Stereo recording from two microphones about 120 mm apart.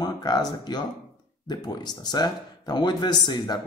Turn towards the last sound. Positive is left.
turn(degrees=35)  # may be behind; listen again after turning